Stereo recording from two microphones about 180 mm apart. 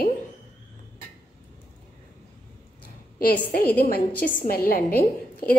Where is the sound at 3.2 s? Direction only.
55° left (ahead or behind).